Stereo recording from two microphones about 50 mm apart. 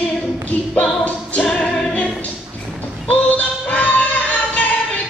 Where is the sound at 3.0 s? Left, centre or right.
Left.